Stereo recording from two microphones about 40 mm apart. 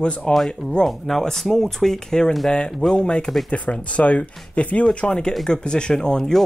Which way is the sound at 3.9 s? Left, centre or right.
Left.